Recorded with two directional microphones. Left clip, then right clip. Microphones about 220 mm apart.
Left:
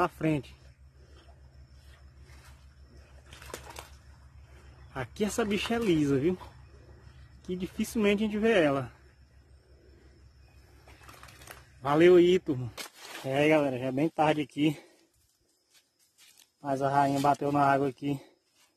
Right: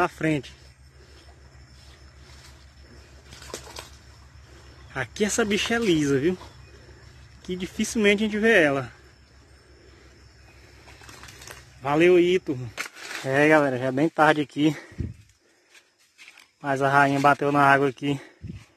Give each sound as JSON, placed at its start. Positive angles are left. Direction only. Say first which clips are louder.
{"t": 0.0, "sound": "a man's voice", "louder": "right 5 dB", "side_deg": 5}
{"t": 4.9, "sound": "a man's voice", "louder": "right 6 dB", "side_deg": 5}
{"t": 7.4, "sound": "a man's voice", "louder": "right 5 dB", "side_deg": 5}
{"t": 11.8, "sound": "a man's voice", "louder": "right 2 dB", "side_deg": 15}
{"t": 13.2, "sound": "a man's voice", "louder": "right 6 dB", "side_deg": 0}
{"t": 16.6, "sound": "a man's voice", "louder": "right 6 dB", "side_deg": 0}